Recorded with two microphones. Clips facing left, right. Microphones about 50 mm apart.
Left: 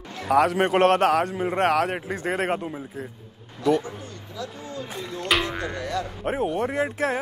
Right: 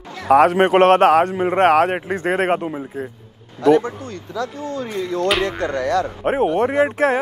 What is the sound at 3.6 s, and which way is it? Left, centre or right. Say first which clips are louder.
Speech: right 8 dB; right.